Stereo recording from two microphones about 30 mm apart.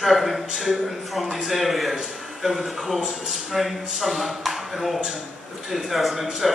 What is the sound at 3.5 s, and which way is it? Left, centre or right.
Speech, centre.